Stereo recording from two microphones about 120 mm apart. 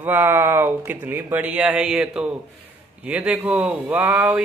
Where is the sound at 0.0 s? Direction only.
15° right (ahead or behind).